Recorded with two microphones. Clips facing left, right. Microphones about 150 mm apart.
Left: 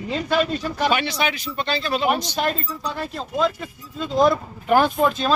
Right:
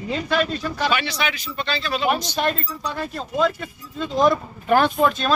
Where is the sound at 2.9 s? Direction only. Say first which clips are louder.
Right 2 dB; centre (ahead or behind).